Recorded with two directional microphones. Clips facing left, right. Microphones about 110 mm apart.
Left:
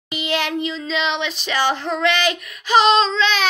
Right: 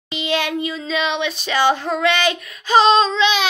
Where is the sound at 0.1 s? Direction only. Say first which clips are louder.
Right 1 dB; 20° right (ahead or behind).